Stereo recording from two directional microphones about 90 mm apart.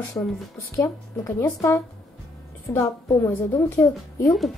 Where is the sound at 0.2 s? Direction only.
50° left (ahead or behind).